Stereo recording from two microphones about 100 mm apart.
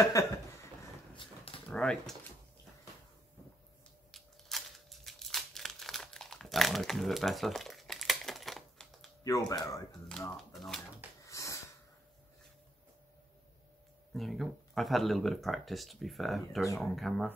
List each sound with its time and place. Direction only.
0.2 s speech: 30° left (ahead or behind)
1.1 s dog: 60° left (ahead or behind)
1.7 s speech: 10° left (ahead or behind)
4.1 s crumpling: centre (ahead or behind)
9.2 s speech: 35° left (ahead or behind)
10.3 s speech: centre (ahead or behind)
11.2 s snort: 30° left (ahead or behind)
14.1 s speech: centre (ahead or behind)